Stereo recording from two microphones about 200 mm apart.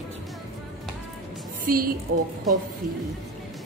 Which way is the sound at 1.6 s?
45° right (ahead or behind).